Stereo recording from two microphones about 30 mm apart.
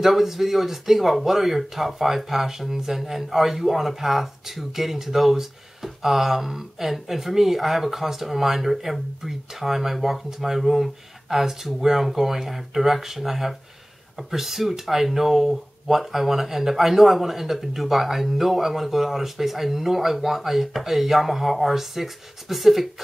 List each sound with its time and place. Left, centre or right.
0.0 s speech: centre